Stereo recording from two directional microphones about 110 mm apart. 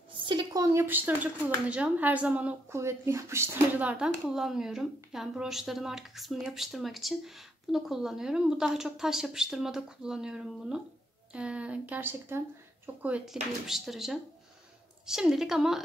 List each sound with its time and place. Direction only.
0.1 s a sound: 45° right (ahead or behind)
0.7 s speech: 15° right (ahead or behind)
2.7 s speech: 25° right (ahead or behind)
13.2 s speech: 5° right (ahead or behind)